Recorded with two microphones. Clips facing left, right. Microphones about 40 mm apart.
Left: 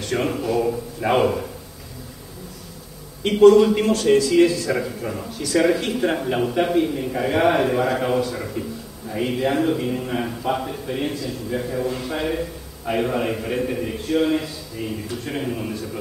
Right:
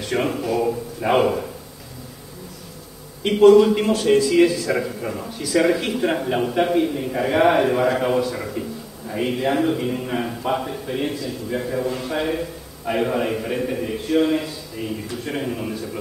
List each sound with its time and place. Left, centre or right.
0.0 s a man's voice: centre
3.3 s a man's voice: centre